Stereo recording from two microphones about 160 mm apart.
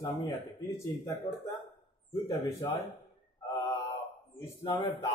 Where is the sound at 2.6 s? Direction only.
20° left (ahead or behind).